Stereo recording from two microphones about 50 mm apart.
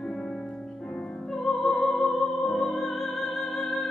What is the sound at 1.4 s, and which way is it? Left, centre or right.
Music, centre.